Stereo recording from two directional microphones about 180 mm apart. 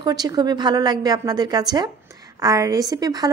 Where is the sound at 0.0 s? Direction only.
25° right (ahead or behind).